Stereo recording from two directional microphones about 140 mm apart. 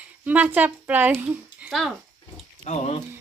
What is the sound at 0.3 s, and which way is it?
A woman's voice, 10° right (ahead or behind).